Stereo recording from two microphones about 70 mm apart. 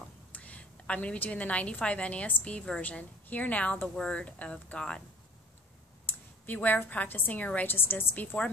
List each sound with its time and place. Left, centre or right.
0.3 s a woman's voice: left
6.0 s a woman's voice: left